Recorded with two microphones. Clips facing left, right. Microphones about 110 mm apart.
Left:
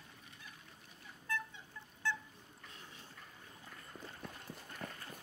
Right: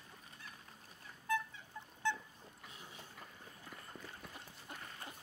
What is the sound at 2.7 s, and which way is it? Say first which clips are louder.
Boat: even; 10° right (ahead or behind).